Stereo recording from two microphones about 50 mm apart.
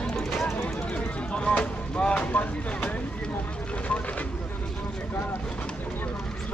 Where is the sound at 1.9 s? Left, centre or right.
Left.